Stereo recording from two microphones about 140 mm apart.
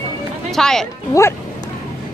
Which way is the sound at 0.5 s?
5° left (ahead or behind).